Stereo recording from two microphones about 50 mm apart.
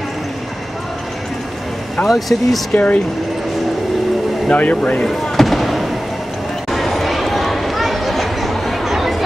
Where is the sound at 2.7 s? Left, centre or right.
Left.